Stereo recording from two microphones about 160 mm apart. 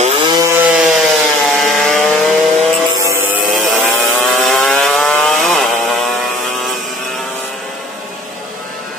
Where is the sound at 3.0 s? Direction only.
15° right (ahead or behind).